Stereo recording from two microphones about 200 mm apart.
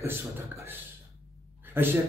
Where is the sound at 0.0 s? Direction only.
10° right (ahead or behind).